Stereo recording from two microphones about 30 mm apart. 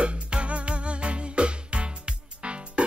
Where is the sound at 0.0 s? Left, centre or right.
Right.